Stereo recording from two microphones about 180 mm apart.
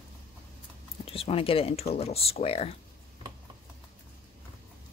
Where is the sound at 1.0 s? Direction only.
30° left (ahead or behind).